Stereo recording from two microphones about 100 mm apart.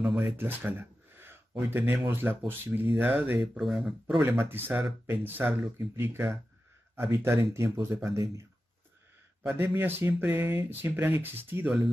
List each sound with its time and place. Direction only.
0.2 s speech: 20° right (ahead or behind)
3.5 s speech: centre (ahead or behind)
4.2 s speech: 20° right (ahead or behind)
9.5 s speech: 20° right (ahead or behind)